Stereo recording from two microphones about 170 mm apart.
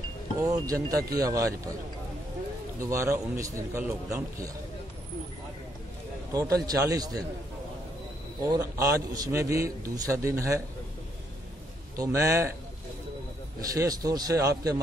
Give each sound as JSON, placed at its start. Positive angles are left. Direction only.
{"t": 0.4, "sound": "a man's voice", "side_deg": -20}
{"t": 2.8, "sound": "a man's voice", "side_deg": -20}
{"t": 6.3, "sound": "a man's voice", "side_deg": -20}
{"t": 8.5, "sound": "a man's voice", "side_deg": -20}
{"t": 12.0, "sound": "a man's voice", "side_deg": -20}
{"t": 13.6, "sound": "a man's voice", "side_deg": -20}